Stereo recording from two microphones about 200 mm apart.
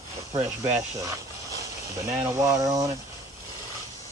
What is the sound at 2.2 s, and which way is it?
Speech, 15° right (ahead or behind).